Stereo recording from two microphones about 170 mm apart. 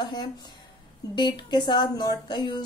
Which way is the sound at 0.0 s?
25° left (ahead or behind).